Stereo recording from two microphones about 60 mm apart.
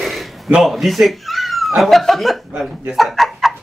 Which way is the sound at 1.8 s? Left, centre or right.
Centre.